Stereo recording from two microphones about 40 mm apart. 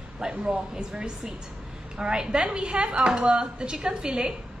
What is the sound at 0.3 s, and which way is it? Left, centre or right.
Speech, right.